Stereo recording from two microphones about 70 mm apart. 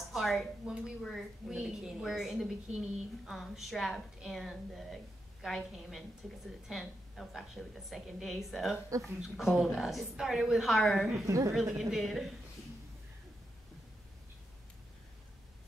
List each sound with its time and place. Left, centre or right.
0.1 s a woman's voice: centre
1.5 s a woman's voice: centre
11.2 s a woman's voice: right
11.5 s a woman's voice: centre